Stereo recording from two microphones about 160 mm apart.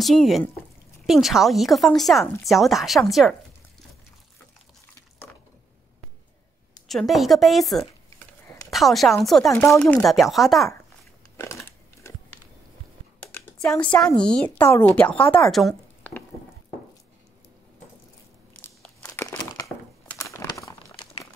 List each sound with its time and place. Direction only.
0.0 s speech: centre (ahead or behind)
6.9 s a woman's voice: centre (ahead or behind)
9.5 s speech: 10° left (ahead or behind)
13.3 s speech: 5° left (ahead or behind)
18.8 s crumpling: 5° left (ahead or behind)
19.2 s crumpling: 20° left (ahead or behind)